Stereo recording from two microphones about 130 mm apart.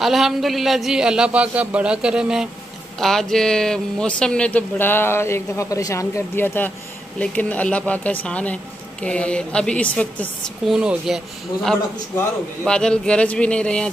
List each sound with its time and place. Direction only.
0.0 s a man's voice: centre (ahead or behind)
10.7 s a man's voice: 5° right (ahead or behind)